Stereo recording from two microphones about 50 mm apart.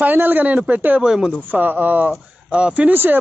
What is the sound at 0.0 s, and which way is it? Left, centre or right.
Speech, right.